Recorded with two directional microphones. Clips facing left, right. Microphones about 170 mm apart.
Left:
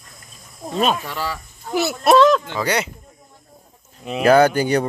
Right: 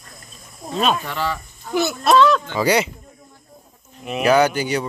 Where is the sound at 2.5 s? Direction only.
10° right (ahead or behind).